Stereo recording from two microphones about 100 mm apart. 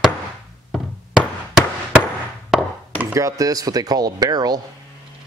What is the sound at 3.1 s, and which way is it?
Speech, 35° right (ahead or behind).